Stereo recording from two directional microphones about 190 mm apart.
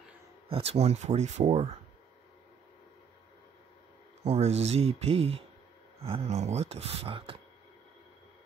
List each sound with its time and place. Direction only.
0.5 s speech: 30° right (ahead or behind)
4.2 s speech: 35° right (ahead or behind)